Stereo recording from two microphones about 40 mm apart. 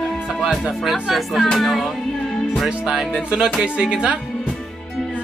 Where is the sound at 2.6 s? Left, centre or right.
Centre.